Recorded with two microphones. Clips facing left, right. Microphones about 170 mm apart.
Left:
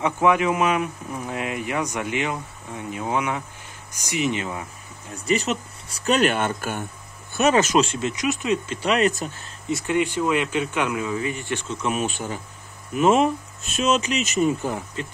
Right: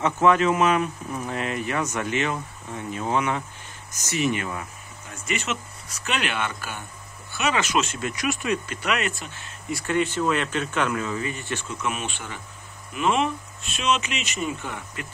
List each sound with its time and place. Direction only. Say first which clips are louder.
0.0 s speech: even; 10° left (ahead or behind)
5.1 s speech: left 6 dB; 35° left (ahead or behind)
9.7 s speech: left 2 dB; 20° left (ahead or behind)
11.7 s speech: left 6 dB; 35° left (ahead or behind)